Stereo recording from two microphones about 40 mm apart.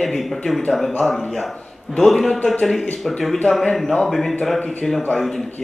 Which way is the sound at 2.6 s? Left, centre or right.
Centre.